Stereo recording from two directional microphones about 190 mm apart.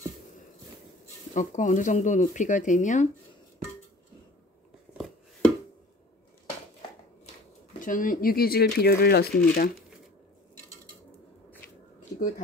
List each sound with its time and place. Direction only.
1.3 s speech: 40° left (ahead or behind)
4.9 s a sound: centre (ahead or behind)
7.8 s speech: 45° left (ahead or behind)